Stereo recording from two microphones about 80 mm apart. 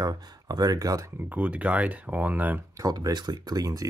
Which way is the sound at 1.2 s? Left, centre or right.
Centre.